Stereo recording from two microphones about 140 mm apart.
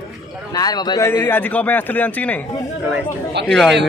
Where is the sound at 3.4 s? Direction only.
5° left (ahead or behind).